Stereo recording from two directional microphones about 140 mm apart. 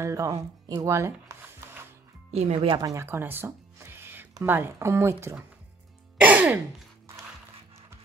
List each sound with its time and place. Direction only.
0.0 s speech: 25° right (ahead or behind)
2.3 s speech: 50° right (ahead or behind)
2.7 s speech: 25° right (ahead or behind)
6.1 s music: 10° right (ahead or behind)